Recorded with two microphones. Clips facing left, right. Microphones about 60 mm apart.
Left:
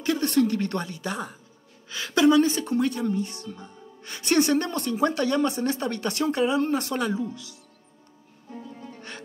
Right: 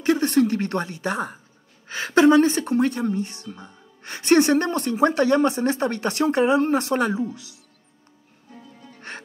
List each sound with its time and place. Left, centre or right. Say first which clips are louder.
0.0 s a woman's voice: right 4 dB; right
8.7 s music: left 5 dB; left